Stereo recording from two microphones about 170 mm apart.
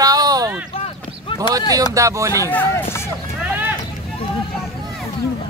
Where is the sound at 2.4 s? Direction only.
15° left (ahead or behind).